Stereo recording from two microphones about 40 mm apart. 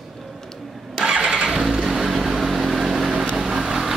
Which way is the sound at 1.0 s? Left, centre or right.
Right.